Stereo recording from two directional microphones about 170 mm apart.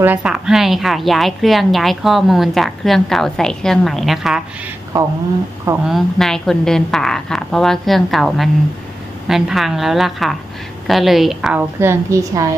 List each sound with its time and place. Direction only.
0.0 s a woman's voice: 10° right (ahead or behind)
4.9 s speech: 20° right (ahead or behind)
5.9 s a woman's voice: centre (ahead or behind)
11.8 s a woman's voice: 15° right (ahead or behind)